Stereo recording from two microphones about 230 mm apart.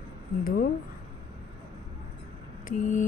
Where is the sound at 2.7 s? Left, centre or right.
Left.